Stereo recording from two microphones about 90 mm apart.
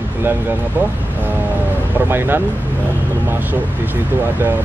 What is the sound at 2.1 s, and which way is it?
Speech, 25° right (ahead or behind).